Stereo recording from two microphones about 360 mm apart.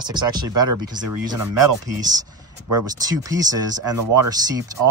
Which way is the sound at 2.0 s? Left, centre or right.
Centre.